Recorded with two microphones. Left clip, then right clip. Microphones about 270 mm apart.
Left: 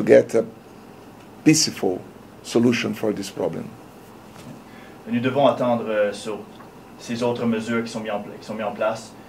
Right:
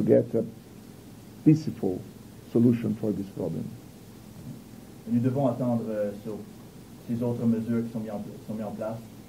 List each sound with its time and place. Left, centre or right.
0.0 s a man's voice: centre
3.1 s speech: left
5.1 s a man's voice: centre